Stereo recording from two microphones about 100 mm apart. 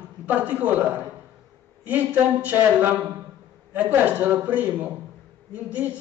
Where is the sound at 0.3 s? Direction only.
15° right (ahead or behind).